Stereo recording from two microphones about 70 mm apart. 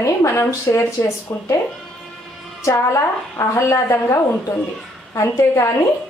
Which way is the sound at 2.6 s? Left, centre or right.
Left.